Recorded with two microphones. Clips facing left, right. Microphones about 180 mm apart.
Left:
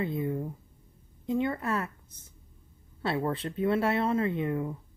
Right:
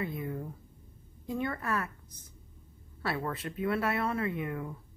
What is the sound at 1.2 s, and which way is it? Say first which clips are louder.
A woman's voice: left 5 dB; 20° left (ahead or behind).